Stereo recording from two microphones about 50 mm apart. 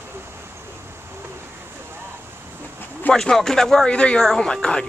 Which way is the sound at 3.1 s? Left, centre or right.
Centre.